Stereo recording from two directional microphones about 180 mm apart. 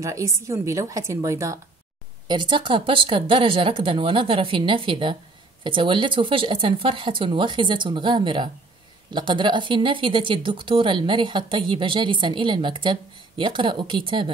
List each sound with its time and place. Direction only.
0.0 s a woman's voice: 15° right (ahead or behind)